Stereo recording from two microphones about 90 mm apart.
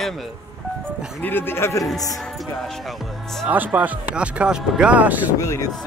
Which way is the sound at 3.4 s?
20° right (ahead or behind).